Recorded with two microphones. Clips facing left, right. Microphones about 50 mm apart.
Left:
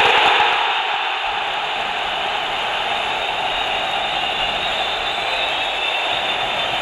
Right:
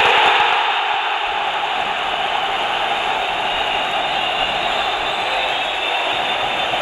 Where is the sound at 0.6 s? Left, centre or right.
Right.